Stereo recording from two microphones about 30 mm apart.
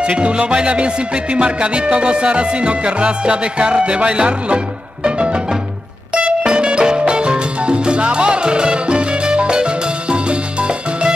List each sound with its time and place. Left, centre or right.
0.0 s music: right
6.4 s salsa music: right